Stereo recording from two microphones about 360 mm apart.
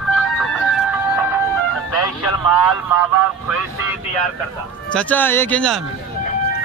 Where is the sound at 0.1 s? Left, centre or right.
Centre.